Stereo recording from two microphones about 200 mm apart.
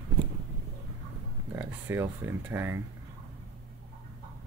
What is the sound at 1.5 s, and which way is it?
Speech, 10° right (ahead or behind).